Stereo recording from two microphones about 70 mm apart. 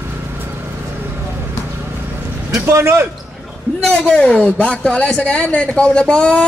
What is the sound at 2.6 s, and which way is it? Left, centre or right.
Speech, right.